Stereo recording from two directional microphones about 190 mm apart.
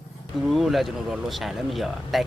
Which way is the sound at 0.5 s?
Centre (ahead or behind).